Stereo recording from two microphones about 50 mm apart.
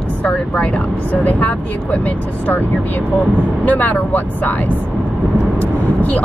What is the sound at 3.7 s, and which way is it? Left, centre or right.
Speech, left.